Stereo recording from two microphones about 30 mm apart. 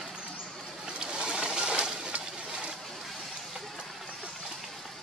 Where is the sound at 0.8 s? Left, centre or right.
Right.